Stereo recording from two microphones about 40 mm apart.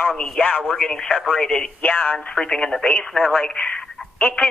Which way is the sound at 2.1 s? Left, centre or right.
Centre.